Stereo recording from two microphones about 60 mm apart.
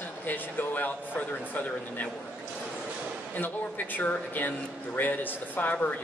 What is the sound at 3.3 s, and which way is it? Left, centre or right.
Speech, left.